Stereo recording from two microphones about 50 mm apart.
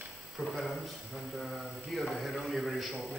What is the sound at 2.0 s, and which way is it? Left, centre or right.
Speech, centre.